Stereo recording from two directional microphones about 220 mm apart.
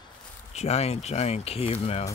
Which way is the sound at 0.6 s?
30° left (ahead or behind).